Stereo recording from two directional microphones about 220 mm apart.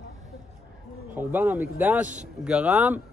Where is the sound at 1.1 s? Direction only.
10° right (ahead or behind).